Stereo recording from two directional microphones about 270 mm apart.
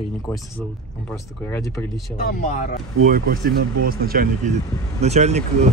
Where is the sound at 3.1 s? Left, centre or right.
Right.